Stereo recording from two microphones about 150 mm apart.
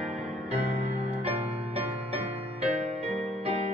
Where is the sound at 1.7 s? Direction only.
45° right (ahead or behind).